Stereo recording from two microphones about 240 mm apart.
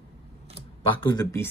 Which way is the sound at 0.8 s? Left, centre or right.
Centre.